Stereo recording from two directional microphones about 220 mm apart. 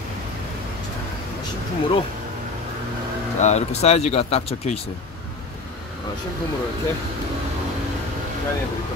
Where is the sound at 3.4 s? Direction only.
30° left (ahead or behind).